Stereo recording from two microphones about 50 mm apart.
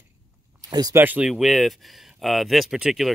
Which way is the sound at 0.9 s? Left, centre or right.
Right.